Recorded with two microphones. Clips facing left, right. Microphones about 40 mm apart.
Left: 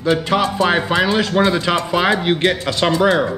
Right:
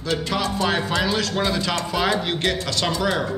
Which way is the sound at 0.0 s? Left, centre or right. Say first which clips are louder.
Left 7 dB; left.